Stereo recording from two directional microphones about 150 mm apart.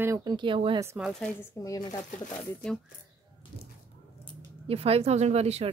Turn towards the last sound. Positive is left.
turn(degrees=-45)  # may be behind; listen again after turning